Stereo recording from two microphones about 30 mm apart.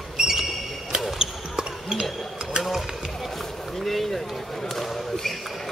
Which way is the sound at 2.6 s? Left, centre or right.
Centre.